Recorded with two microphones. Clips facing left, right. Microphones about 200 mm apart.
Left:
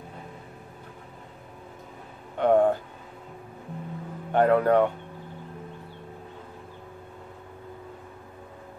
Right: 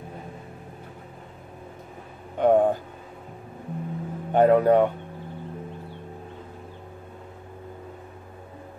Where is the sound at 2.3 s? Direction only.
15° right (ahead or behind).